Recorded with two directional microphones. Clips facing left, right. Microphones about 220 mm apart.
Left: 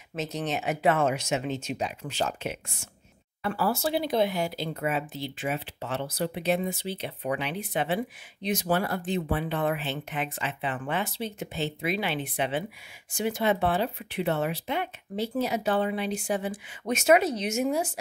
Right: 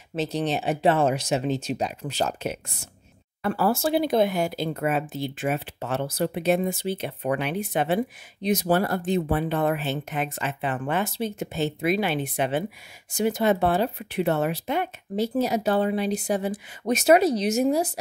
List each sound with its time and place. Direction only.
0.1 s speech: 30° right (ahead or behind)